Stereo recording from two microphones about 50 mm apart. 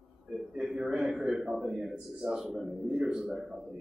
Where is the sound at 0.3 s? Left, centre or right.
Centre.